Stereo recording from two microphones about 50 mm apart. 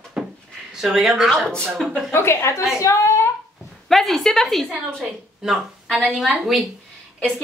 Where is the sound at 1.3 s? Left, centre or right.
Centre.